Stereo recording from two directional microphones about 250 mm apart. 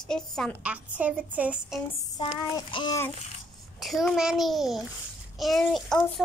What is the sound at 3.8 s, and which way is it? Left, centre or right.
A woman's voice, centre.